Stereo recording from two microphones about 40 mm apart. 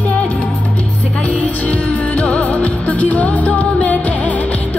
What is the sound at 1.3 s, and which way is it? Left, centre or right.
Music, left.